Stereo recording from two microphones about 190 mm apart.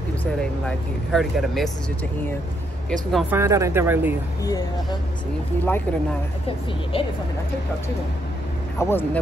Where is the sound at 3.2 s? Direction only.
15° right (ahead or behind).